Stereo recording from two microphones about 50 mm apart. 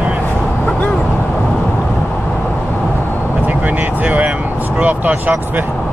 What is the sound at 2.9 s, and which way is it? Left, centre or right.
Vehicle, left.